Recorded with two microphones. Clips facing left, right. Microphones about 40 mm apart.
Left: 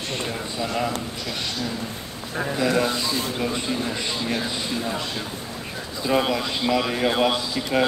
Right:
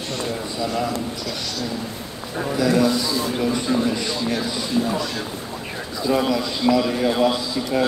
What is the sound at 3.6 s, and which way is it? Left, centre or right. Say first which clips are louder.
Speech: right 5 dB; left.